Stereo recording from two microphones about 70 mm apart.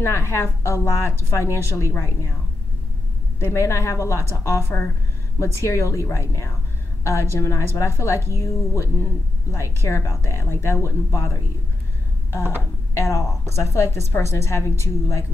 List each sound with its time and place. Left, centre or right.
0.0 s speech: left
3.3 s a woman's voice: left